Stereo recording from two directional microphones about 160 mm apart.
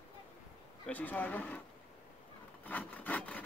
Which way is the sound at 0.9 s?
10° left (ahead or behind).